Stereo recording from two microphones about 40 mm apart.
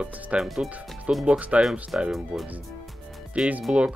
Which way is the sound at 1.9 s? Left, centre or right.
Right.